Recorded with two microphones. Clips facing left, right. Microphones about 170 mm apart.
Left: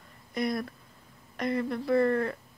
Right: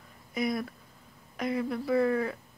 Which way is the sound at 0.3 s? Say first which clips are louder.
Even; 5° right (ahead or behind).